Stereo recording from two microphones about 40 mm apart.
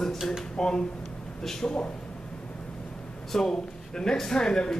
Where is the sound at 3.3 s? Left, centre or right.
Centre.